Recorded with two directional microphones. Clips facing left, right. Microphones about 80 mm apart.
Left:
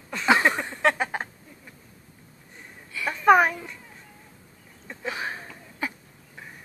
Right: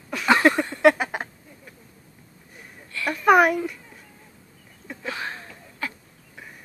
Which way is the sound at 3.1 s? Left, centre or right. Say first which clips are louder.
Right 1 dB; centre.